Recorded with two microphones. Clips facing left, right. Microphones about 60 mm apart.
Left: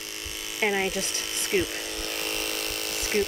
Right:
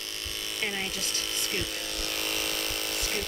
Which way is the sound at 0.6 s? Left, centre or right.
Left.